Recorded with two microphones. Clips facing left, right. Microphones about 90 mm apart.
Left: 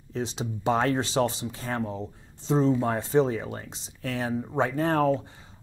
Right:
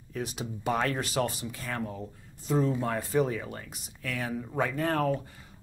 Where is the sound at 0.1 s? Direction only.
25° left (ahead or behind).